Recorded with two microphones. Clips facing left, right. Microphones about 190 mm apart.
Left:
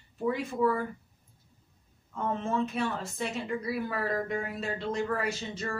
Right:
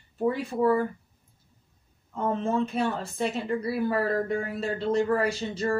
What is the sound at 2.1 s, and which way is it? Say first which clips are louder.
Speech: right 4 dB; 35° right (ahead or behind).